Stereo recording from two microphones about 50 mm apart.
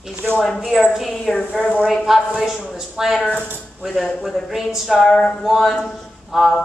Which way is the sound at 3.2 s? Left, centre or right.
Left.